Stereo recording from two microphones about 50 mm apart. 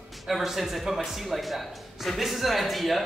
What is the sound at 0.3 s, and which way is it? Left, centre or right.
A man's voice, centre.